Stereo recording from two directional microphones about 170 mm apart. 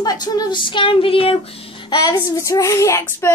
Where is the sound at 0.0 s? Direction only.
25° left (ahead or behind).